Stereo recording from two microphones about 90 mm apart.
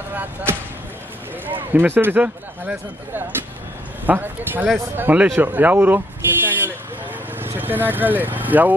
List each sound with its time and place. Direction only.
0.1 s speech: 25° right (ahead or behind)
4.0 s speech: 20° right (ahead or behind)